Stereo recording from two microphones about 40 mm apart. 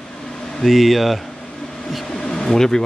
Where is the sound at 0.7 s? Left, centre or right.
Centre.